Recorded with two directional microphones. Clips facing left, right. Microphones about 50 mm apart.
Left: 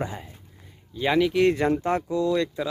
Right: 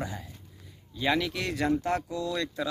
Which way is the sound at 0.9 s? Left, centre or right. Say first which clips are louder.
Left 6 dB; centre.